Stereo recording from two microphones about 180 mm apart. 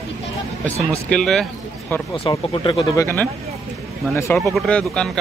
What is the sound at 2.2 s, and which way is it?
Speech, 30° left (ahead or behind).